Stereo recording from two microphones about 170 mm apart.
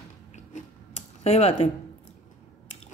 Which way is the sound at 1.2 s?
40° left (ahead or behind).